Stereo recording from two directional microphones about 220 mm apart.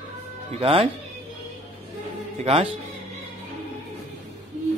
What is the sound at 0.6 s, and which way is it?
Speech, 25° right (ahead or behind).